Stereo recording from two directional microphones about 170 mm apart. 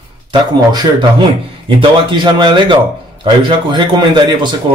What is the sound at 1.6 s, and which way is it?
Speech, 30° right (ahead or behind).